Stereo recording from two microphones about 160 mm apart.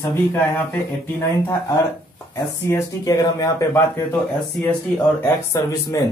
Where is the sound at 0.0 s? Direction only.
15° left (ahead or behind).